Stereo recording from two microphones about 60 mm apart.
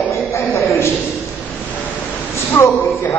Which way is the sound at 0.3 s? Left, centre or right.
Left.